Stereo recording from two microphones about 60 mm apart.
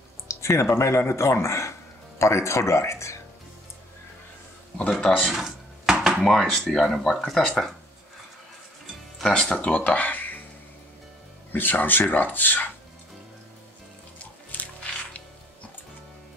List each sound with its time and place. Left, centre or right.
0.3 s speech: left
5.3 s dishes: centre
6.2 s speech: centre
9.2 s speech: centre
11.5 s speech: left
14.5 s music: left